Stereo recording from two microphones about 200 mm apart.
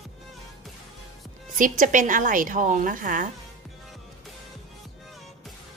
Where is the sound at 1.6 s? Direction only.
40° right (ahead or behind).